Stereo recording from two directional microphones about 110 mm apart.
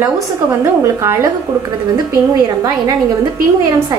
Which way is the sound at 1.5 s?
30° right (ahead or behind).